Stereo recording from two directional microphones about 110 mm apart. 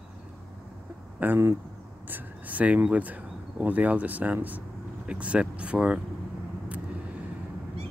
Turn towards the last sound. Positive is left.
turn(degrees=-10)  # may be behind; listen again after turning